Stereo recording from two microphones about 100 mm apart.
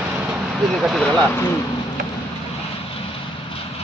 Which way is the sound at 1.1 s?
10° left (ahead or behind).